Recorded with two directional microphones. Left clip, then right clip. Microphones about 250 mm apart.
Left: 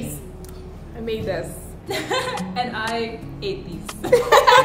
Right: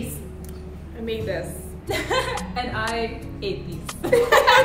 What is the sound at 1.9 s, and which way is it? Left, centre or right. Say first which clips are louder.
Speech: even; centre.